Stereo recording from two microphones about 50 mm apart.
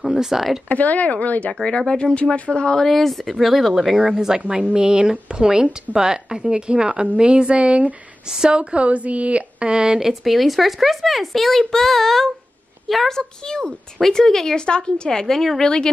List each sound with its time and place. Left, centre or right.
0.0 s speech: centre
0.7 s speech: left
1.5 s a woman's voice: centre
4.6 s speech: right
8.3 s speech: centre
9.9 s a woman's voice: centre